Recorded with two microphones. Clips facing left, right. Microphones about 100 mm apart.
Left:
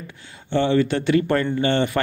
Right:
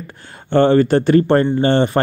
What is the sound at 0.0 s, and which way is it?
Speech, 45° right (ahead or behind).